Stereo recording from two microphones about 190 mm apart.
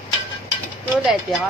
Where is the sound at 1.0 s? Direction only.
5° right (ahead or behind).